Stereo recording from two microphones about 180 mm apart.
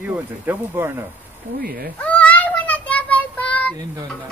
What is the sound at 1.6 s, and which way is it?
Speech, 55° right (ahead or behind).